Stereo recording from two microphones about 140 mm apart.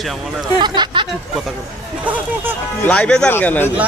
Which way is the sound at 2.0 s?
10° right (ahead or behind).